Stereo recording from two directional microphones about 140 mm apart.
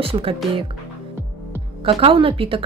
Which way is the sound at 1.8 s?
40° right (ahead or behind).